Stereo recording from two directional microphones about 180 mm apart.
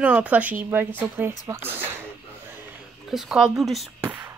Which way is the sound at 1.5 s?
10° right (ahead or behind).